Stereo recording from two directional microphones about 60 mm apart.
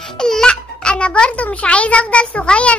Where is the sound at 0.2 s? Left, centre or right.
Centre.